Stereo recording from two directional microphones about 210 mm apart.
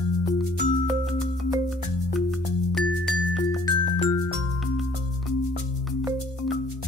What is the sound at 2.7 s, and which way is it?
Music, centre (ahead or behind).